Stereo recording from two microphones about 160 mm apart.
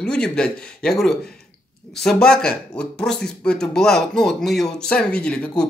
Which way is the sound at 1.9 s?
5° left (ahead or behind).